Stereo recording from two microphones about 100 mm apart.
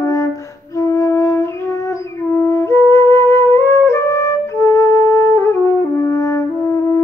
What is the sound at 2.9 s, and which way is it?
Music, 25° left (ahead or behind).